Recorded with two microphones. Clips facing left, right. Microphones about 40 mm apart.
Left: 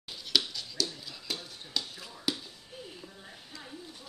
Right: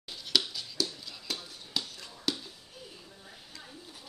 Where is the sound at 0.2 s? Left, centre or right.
Centre.